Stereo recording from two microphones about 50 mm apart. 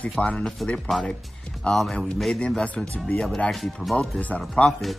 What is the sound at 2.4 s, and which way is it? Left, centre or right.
Speech, left.